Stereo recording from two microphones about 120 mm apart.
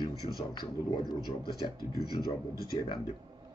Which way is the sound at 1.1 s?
35° right (ahead or behind).